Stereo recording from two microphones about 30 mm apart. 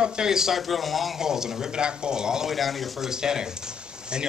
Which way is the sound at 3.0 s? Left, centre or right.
Right.